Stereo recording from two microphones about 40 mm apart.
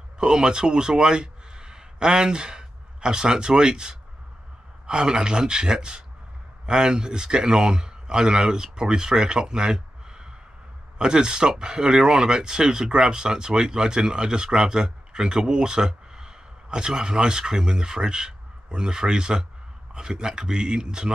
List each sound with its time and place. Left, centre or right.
0.2 s speech: right